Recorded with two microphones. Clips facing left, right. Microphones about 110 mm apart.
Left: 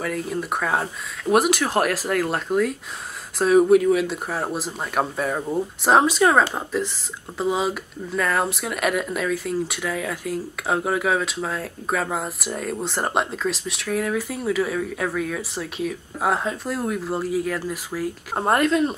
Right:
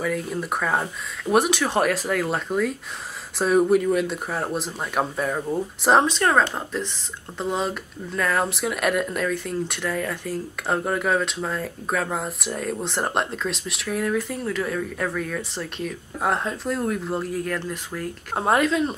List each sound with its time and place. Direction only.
0.0 s speech: centre (ahead or behind)